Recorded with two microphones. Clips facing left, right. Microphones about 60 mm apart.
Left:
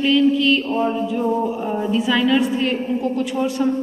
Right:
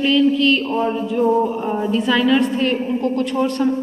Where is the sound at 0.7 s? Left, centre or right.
Centre.